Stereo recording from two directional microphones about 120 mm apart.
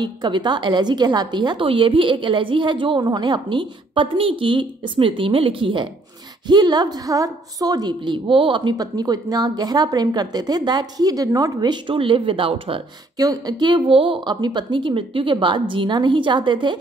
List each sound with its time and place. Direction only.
0.0 s a woman's voice: 40° right (ahead or behind)
13.2 s speech: 30° right (ahead or behind)